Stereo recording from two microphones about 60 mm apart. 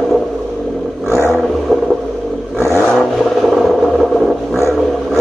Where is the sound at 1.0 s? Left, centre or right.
Left.